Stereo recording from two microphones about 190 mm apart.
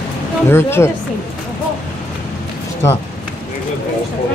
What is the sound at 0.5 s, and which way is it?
Speech, 10° left (ahead or behind).